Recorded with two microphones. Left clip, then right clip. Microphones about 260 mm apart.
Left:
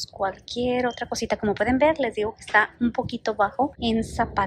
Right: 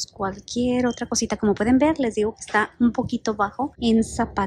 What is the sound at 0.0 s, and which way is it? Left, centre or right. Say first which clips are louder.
Speech: left 1 dB; centre.